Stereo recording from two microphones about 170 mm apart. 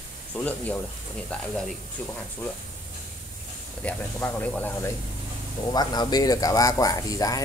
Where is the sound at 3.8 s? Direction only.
10° left (ahead or behind).